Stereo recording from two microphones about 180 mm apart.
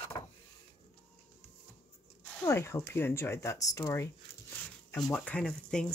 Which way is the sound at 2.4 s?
15° left (ahead or behind).